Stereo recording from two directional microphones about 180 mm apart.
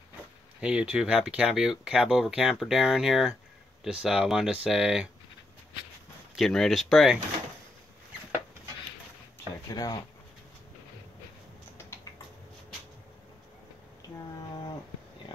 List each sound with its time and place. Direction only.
0.6 s speech: 5° right (ahead or behind)
6.3 s speech: centre (ahead or behind)
9.7 s speech: 20° left (ahead or behind)
11.8 s typing: 15° left (ahead or behind)